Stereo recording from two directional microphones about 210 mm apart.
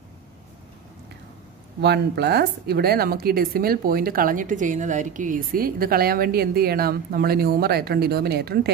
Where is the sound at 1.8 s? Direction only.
50° right (ahead or behind).